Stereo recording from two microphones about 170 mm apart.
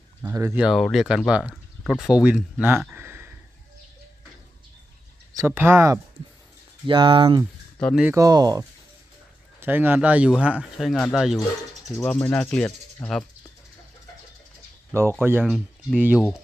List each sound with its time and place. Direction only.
0.2 s speech: 15° right (ahead or behind)
0.6 s speech: 5° right (ahead or behind)
2.6 s a sound: 10° right (ahead or behind)
5.3 s speech: 15° right (ahead or behind)
6.9 s speech: 30° right (ahead or behind)
7.8 s speech: 5° right (ahead or behind)
8.1 s speech: 20° right (ahead or behind); by 13.1 s 10° left (ahead or behind)
14.9 s speech: 15° right (ahead or behind)